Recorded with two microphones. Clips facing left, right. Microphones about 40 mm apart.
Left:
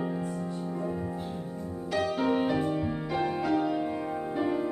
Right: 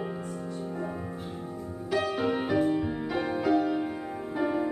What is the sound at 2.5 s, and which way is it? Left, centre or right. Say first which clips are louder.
Music: right 3 dB; centre.